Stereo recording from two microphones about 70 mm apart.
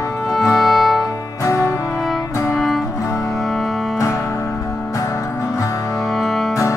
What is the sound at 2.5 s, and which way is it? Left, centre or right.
Music, centre.